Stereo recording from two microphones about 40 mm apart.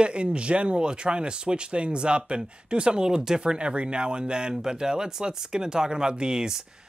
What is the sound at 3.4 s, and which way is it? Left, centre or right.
Speech, right.